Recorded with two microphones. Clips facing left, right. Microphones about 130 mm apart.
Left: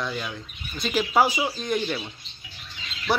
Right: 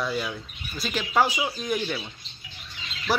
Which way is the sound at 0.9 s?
10° left (ahead or behind).